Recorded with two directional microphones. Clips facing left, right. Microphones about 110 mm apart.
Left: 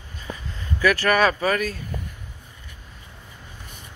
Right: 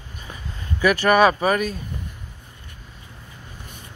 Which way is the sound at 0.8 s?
20° right (ahead or behind).